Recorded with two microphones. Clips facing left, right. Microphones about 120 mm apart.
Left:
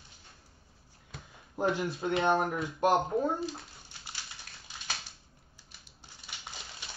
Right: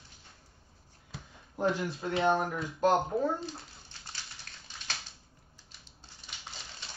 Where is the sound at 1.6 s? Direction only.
20° left (ahead or behind).